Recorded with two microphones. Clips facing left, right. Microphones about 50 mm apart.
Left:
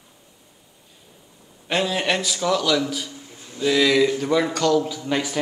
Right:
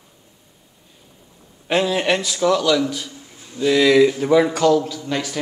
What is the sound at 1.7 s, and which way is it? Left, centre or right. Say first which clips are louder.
A man's voice: right 4 dB; centre.